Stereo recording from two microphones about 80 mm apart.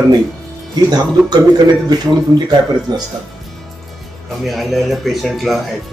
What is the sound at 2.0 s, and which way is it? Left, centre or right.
Speech, right.